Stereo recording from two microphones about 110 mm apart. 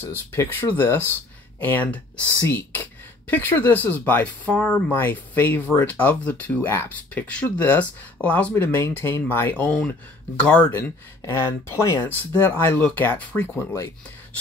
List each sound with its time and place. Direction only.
0.0 s speech: 20° left (ahead or behind)